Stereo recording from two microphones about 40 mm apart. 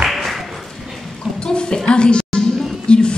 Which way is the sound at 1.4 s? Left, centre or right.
Left.